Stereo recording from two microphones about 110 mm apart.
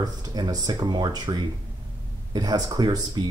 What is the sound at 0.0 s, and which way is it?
Speech, 35° right (ahead or behind).